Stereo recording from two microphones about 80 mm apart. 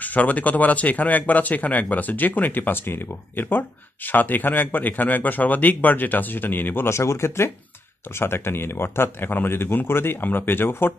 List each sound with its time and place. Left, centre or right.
0.0 s speech: centre